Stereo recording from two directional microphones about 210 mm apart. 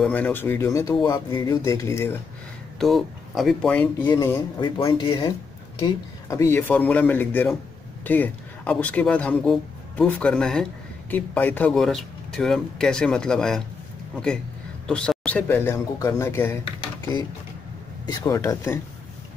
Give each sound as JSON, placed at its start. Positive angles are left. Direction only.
{"t": 0.0, "sound": "speech", "side_deg": 5}
{"t": 2.8, "sound": "speech", "side_deg": 0}
{"t": 4.6, "sound": "speech", "side_deg": 25}
{"t": 14.9, "sound": "speech", "side_deg": 5}
{"t": 18.0, "sound": "speech", "side_deg": 15}